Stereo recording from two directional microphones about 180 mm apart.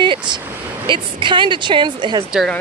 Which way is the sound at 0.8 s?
25° right (ahead or behind).